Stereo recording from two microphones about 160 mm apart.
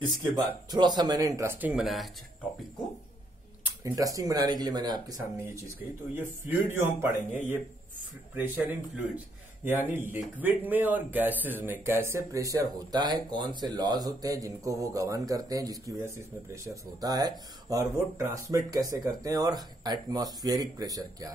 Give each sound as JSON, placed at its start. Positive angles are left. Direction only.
{"t": 0.0, "sound": "speech", "side_deg": -20}
{"t": 3.8, "sound": "speech", "side_deg": -20}
{"t": 6.1, "sound": "a man's voice", "side_deg": -10}